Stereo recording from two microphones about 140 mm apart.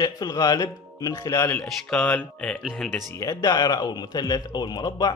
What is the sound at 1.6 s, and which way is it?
Speech, 5° left (ahead or behind).